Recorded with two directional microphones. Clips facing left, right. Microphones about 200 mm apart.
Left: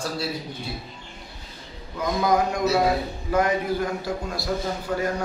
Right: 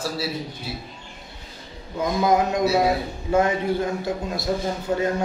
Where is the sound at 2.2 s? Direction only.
20° right (ahead or behind).